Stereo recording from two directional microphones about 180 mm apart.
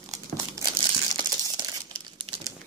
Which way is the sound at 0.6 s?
5° left (ahead or behind).